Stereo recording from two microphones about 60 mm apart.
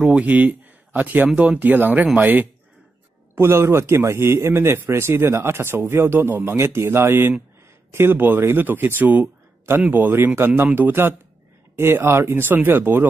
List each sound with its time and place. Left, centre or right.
0.0 s speech: right
3.3 s a man's voice: right